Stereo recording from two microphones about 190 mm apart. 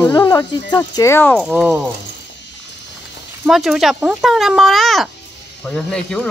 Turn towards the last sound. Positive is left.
turn(degrees=5)  # may be behind; listen again after turning